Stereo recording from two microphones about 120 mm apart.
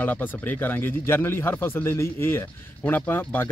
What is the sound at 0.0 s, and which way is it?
Speech, 15° left (ahead or behind).